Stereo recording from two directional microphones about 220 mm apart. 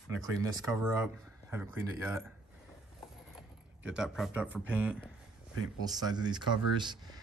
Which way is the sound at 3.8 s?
5° right (ahead or behind).